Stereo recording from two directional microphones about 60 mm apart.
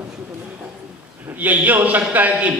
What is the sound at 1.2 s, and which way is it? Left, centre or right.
A man's voice, right.